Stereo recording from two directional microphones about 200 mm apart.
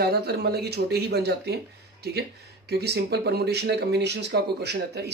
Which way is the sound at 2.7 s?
55° right (ahead or behind).